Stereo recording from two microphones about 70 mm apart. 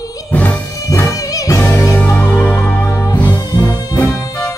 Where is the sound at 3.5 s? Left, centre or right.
Left.